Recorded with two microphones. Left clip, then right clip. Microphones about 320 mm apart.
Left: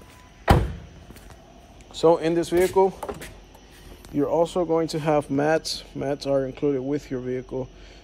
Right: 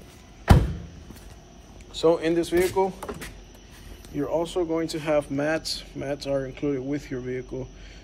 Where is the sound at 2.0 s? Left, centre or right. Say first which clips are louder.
Left 2 dB; left.